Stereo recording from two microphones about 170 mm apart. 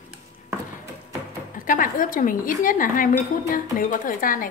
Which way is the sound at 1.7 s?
55° left (ahead or behind).